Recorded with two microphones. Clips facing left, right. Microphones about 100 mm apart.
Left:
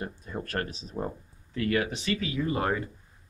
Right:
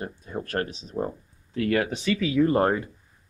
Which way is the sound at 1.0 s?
15° right (ahead or behind).